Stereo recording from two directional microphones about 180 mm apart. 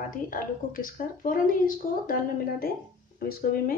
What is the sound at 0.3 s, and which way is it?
Speech, 50° left (ahead or behind).